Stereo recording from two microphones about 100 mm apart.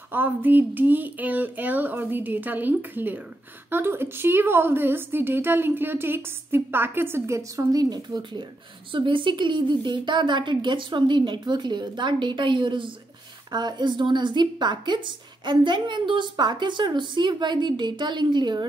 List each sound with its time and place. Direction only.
0.1 s a woman's voice: 20° right (ahead or behind); by 12.9 s 55° right (ahead or behind)
13.5 s a woman's voice: 45° right (ahead or behind)